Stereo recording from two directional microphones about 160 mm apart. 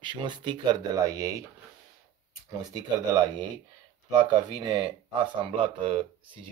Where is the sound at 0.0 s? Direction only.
30° right (ahead or behind).